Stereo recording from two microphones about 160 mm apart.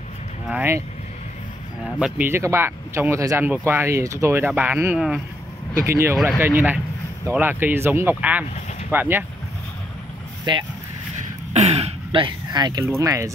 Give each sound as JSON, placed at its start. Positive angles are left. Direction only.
{"t": 0.5, "sound": "speech", "side_deg": -10}
{"t": 1.9, "sound": "speech", "side_deg": -5}
{"t": 5.9, "sound": "speech", "side_deg": -20}
{"t": 10.5, "sound": "speech", "side_deg": -30}
{"t": 11.5, "sound": "speech", "side_deg": -40}